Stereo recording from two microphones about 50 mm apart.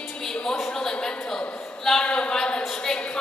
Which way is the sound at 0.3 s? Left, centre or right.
Centre.